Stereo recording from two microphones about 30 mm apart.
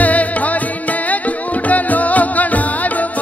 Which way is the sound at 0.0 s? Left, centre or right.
Left.